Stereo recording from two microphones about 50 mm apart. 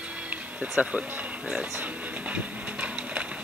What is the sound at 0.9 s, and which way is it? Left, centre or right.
Speech, right.